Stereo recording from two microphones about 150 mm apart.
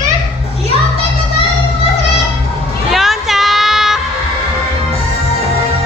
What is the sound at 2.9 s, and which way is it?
Music, centre (ahead or behind).